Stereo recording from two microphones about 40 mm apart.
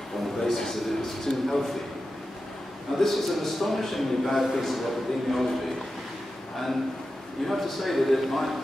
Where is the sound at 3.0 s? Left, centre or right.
Centre.